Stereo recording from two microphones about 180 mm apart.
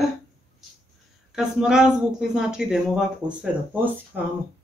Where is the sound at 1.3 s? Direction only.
5° right (ahead or behind).